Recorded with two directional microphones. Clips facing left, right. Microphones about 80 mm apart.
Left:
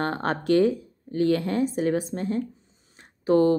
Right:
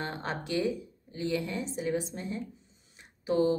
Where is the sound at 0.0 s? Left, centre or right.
Left.